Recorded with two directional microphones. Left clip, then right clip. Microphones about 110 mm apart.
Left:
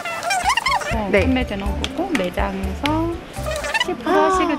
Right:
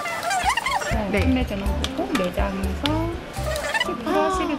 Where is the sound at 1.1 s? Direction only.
25° left (ahead or behind).